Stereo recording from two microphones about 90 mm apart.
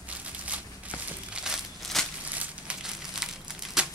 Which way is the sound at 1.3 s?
5° right (ahead or behind).